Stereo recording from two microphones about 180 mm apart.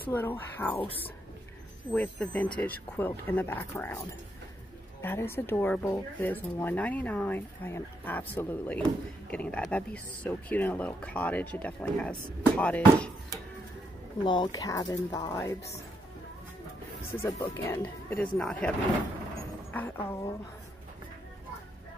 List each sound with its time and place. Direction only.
0.0 s speech: 10° left (ahead or behind)
1.9 s speech: 10° left (ahead or behind)
5.0 s speech: 10° left (ahead or behind)
14.2 s speech: 25° left (ahead or behind)
17.4 s speech: 15° left (ahead or behind)
19.7 s speech: 10° left (ahead or behind)